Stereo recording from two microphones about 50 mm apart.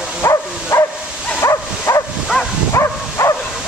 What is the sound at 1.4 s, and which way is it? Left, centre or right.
Bow-wow, left.